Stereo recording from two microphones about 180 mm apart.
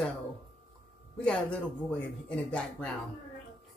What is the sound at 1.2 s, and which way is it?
Speech, 5° left (ahead or behind).